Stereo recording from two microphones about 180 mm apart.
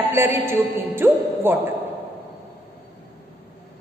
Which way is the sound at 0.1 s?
15° right (ahead or behind).